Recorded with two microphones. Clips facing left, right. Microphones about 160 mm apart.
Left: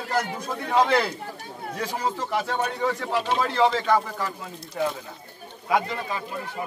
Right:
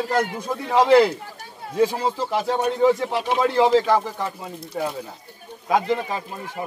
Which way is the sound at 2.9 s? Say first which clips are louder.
Right 4 dB; 15° right (ahead or behind).